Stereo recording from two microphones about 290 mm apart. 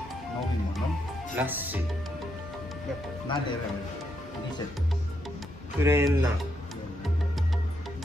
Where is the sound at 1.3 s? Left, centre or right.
Centre.